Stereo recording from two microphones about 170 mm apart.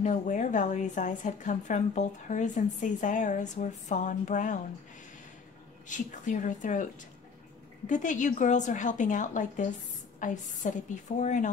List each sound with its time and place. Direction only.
0.0 s a woman's voice: 45° left (ahead or behind)
5.9 s a woman's voice: 50° left (ahead or behind)